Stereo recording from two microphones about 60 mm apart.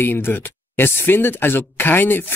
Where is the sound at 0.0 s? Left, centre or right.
Left.